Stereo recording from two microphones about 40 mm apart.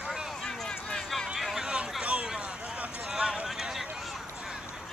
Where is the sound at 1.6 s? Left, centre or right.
Right.